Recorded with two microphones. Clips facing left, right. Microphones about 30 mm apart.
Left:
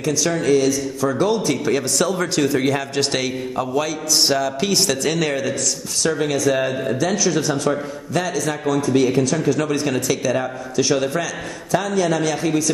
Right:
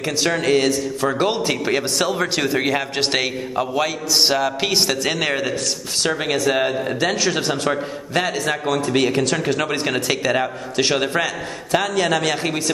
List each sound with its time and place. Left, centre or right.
0.0 s a man's voice: right
5.9 s a man's voice: right